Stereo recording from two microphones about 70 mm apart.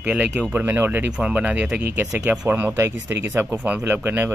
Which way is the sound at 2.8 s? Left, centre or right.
Right.